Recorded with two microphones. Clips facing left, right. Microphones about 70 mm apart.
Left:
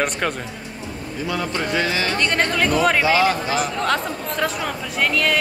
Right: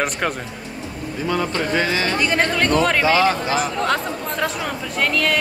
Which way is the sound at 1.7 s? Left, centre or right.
Right.